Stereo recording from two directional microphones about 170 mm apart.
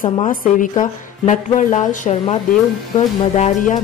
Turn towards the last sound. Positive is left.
turn(degrees=45)  # may be behind; listen again after turning